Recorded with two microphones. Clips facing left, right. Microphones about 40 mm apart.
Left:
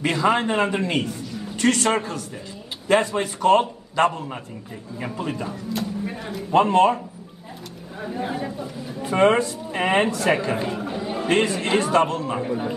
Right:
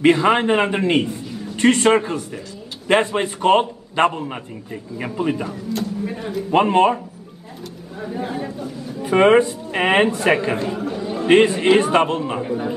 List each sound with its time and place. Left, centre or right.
0.0 s a man's voice: right
5.5 s speech: centre
6.5 s a man's voice: right
8.0 s speech: centre
9.1 s a man's voice: right
9.7 s speech: right
10.1 s a man's voice: right
10.7 s chatter: centre
11.2 s a man's voice: right
12.4 s speech: centre